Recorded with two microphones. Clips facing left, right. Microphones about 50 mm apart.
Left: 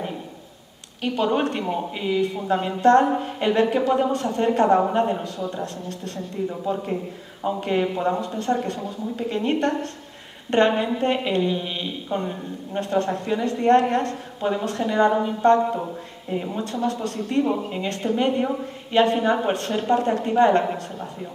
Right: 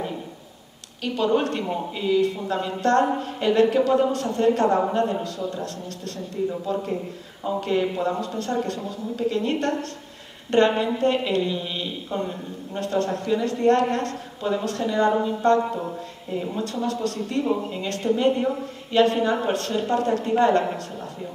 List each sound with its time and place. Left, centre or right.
1.0 s speech: left